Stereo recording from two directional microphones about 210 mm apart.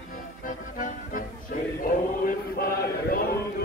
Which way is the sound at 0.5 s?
40° left (ahead or behind).